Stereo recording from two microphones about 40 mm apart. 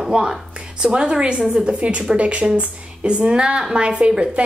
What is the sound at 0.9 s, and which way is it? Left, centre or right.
A woman's voice, right.